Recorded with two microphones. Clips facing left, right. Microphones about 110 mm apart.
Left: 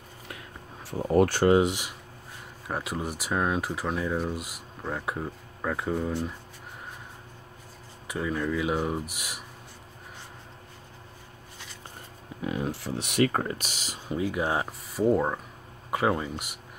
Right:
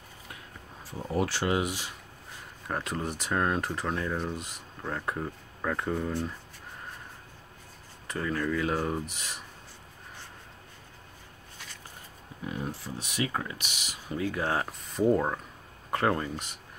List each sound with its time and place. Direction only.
0.8 s speech: 50° left (ahead or behind)
1.5 s speech: 25° left (ahead or behind)
2.6 s speech: 5° left (ahead or behind)
8.1 s speech: 10° left (ahead or behind)
12.4 s speech: 90° left; by 13.9 s 35° left (ahead or behind)
14.0 s speech: 20° left (ahead or behind)
14.6 s speech: 5° left (ahead or behind)